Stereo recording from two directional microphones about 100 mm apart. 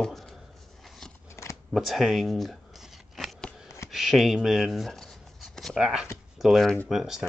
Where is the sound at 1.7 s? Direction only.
Centre (ahead or behind).